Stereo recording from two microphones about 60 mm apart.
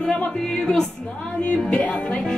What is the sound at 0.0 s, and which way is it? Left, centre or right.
Music, centre.